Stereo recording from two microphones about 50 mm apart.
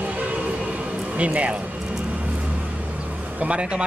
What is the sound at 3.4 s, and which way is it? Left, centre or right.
Speech, right.